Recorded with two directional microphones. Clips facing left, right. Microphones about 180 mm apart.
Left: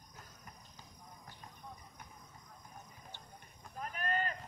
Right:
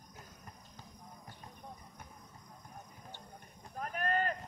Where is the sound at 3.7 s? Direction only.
45° right (ahead or behind).